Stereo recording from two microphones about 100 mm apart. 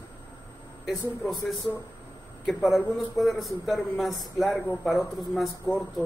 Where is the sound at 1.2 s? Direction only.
Centre (ahead or behind).